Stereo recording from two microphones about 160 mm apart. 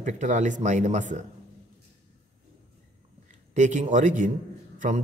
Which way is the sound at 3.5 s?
50° right (ahead or behind).